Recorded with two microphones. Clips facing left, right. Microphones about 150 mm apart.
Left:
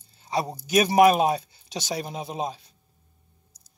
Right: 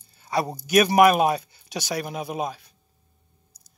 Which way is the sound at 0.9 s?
25° left (ahead or behind).